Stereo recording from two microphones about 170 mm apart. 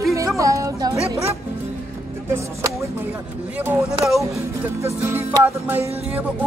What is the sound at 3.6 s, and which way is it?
Music, 15° right (ahead or behind).